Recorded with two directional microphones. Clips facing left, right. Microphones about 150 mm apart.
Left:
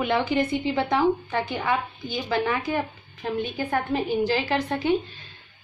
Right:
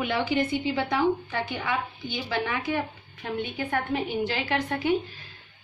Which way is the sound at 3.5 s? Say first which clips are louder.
Left 1 dB; 40° left (ahead or behind).